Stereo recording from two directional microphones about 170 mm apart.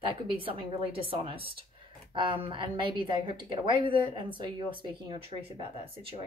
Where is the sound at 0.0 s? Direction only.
30° right (ahead or behind).